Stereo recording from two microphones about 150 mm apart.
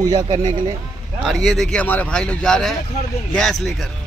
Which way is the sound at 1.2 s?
Centre (ahead or behind).